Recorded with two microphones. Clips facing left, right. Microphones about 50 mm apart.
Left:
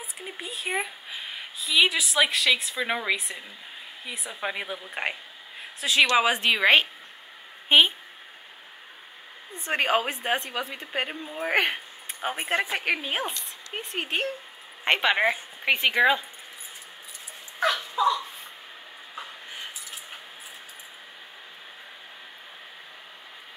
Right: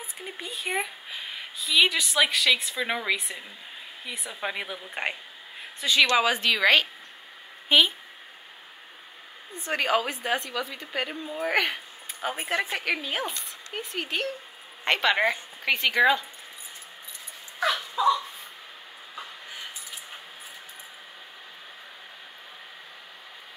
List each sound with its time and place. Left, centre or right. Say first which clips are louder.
0.2 s speech: even; centre
5.6 s a sound: right 1 dB; centre
6.1 s a woman's voice: left 1 dB; left
9.6 s a woman's voice: left 1 dB; left
13.3 s a sound: even; right
13.7 s a woman's voice: left 1 dB; left
14.9 s a woman's voice: left 1 dB; centre
17.6 s crow: even; centre